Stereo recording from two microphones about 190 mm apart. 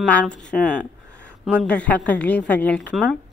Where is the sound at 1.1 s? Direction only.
65° left (ahead or behind).